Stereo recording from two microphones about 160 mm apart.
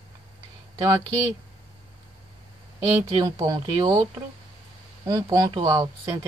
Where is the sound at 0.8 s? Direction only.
20° right (ahead or behind).